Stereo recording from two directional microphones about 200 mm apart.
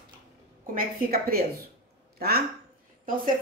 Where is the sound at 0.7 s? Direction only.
50° right (ahead or behind).